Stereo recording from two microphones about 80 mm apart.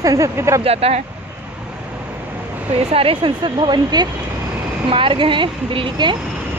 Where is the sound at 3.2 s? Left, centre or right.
Right.